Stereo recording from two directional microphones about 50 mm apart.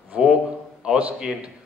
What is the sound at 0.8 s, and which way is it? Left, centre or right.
Speech, centre.